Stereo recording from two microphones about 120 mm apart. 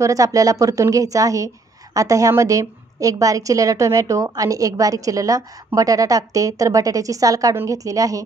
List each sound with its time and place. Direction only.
0.0 s a woman's voice: 30° right (ahead or behind)